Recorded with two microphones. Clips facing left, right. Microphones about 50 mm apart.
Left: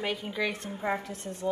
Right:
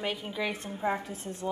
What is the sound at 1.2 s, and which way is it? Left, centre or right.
Music, centre.